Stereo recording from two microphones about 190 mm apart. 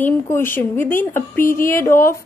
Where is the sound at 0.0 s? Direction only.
10° left (ahead or behind).